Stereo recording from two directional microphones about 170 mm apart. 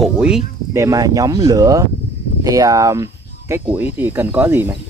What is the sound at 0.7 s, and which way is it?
Speech, 20° right (ahead or behind).